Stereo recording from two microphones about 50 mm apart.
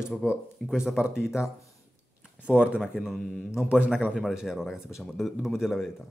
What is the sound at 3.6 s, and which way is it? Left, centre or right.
Speech, right.